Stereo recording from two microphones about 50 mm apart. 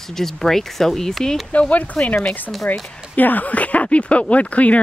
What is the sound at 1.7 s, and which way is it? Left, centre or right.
Speech, left.